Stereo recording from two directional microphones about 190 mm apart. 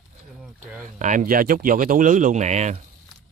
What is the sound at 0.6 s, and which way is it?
Speech, 40° right (ahead or behind).